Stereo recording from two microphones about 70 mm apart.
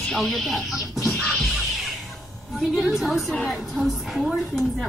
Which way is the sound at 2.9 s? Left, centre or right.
Centre.